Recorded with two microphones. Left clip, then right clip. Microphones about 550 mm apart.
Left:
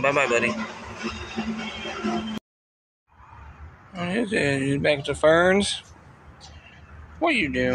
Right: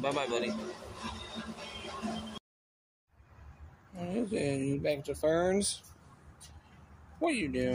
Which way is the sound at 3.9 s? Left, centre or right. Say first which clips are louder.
Left 10 dB; right.